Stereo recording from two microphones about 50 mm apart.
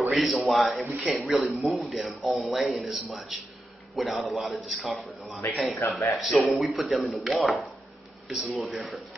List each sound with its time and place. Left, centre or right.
0.1 s speech: centre
5.8 s a man's voice: left
6.1 s speech: centre